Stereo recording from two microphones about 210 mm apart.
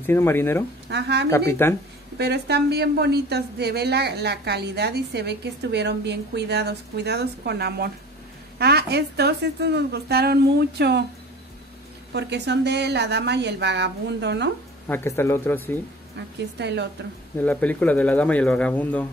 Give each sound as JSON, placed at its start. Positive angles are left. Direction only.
{"t": 0.0, "sound": "speech", "side_deg": 10}
{"t": 0.8, "sound": "speech", "side_deg": -55}
{"t": 1.3, "sound": "speech", "side_deg": 15}
{"t": 2.1, "sound": "speech", "side_deg": -50}
{"t": 12.1, "sound": "speech", "side_deg": -55}
{"t": 14.9, "sound": "speech", "side_deg": 10}
{"t": 16.5, "sound": "a woman's voice", "side_deg": -55}
{"t": 17.4, "sound": "speech", "side_deg": 5}